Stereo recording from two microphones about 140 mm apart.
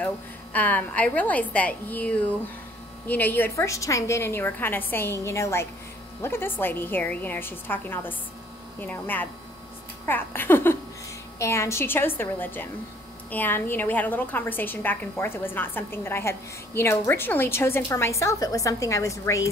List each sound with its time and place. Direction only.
0.0 s a woman's voice: 10° left (ahead or behind)